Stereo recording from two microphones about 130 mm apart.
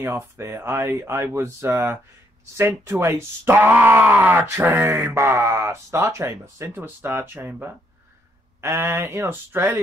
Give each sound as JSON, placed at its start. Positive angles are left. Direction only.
{"t": 0.0, "sound": "speech", "side_deg": -20}